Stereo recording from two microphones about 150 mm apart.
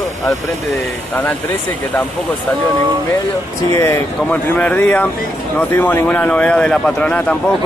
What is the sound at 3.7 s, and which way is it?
A man's voice, 20° left (ahead or behind).